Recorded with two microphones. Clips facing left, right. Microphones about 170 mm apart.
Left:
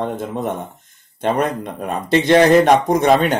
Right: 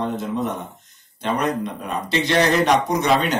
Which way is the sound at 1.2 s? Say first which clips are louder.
Left 3 dB; 50° left (ahead or behind).